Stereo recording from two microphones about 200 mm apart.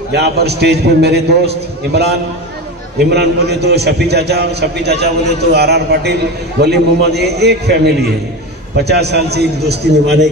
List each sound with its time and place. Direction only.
0.1 s a man's voice: 55° right (ahead or behind)
3.1 s a man's voice: 55° right (ahead or behind)